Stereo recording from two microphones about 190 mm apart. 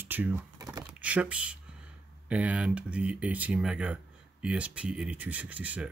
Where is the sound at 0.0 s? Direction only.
10° right (ahead or behind).